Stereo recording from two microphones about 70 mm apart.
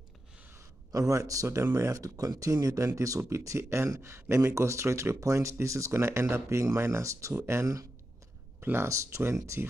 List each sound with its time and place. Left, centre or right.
0.9 s speech: right
8.5 s speech: right
8.8 s speech: right